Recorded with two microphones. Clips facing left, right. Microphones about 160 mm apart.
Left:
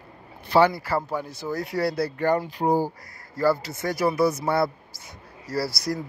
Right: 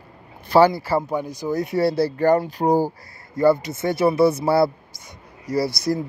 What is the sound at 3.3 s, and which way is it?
Speech, 20° right (ahead or behind).